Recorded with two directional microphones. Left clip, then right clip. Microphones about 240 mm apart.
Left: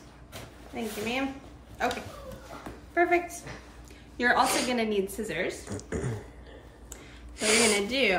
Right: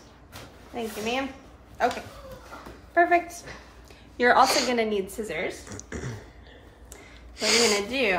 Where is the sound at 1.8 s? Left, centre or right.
Right.